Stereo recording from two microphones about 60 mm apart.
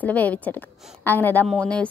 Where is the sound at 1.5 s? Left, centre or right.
Centre.